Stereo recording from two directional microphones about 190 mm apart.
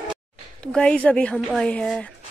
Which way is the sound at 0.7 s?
5° left (ahead or behind).